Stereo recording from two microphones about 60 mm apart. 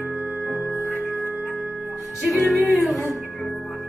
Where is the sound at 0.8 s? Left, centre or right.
Left.